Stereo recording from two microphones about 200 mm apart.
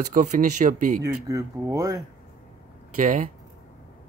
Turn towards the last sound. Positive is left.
turn(degrees=-40)  # may be behind; listen again after turning